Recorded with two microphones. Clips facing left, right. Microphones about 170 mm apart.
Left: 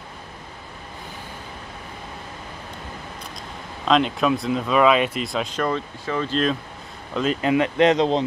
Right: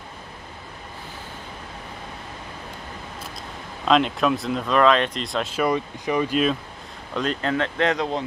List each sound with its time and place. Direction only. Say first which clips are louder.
3.8 s speech: even; centre (ahead or behind)
5.6 s speech: right 5 dB; 15° right (ahead or behind)
7.2 s speech: left 4 dB; 5° left (ahead or behind)